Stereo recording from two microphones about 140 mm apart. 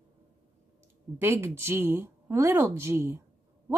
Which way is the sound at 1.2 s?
15° right (ahead or behind).